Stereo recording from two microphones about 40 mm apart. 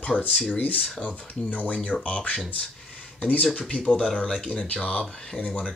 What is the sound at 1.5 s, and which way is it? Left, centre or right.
Speech, left.